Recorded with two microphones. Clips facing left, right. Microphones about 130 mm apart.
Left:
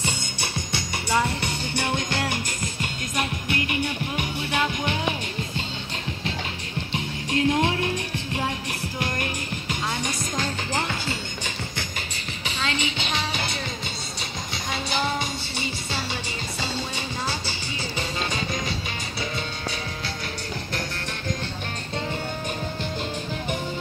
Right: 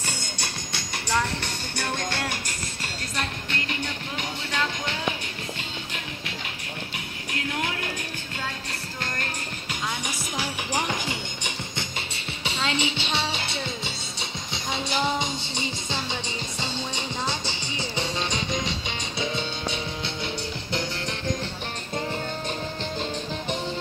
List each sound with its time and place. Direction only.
1.1 s music: 10° left (ahead or behind)
7.3 s music: 25° left (ahead or behind)
9.0 s music: 15° left (ahead or behind)
9.7 s music: 5° right (ahead or behind)
12.4 s music: 30° right (ahead or behind)
16.7 s music: 20° right (ahead or behind)